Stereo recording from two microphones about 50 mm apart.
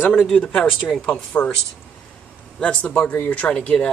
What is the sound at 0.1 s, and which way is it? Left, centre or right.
Speech, centre.